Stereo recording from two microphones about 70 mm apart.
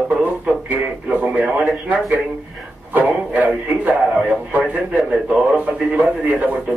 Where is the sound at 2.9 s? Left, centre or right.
Right.